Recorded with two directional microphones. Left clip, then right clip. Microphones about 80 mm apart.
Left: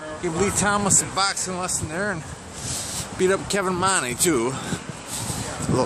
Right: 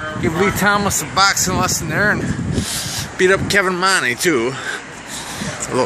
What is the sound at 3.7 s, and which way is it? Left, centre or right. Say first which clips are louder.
Speech: right 7 dB; left.